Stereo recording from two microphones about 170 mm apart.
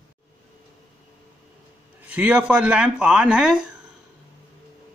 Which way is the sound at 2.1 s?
10° right (ahead or behind).